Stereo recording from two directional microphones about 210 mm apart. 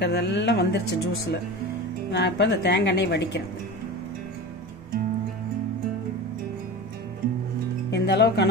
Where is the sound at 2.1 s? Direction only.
55° left (ahead or behind).